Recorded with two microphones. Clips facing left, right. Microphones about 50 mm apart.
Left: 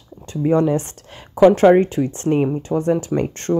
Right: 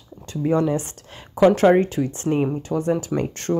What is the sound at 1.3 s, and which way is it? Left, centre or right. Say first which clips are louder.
Speech: left 4 dB; left.